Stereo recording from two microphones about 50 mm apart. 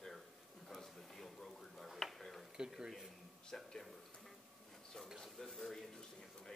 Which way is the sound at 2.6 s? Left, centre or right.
Centre.